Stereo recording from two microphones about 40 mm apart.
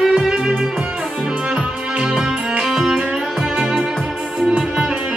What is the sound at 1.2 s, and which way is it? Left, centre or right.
Music, right.